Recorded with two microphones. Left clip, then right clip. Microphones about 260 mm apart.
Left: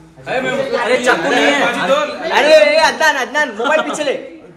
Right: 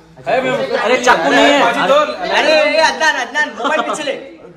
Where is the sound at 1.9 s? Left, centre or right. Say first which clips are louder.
Right 3 dB; right.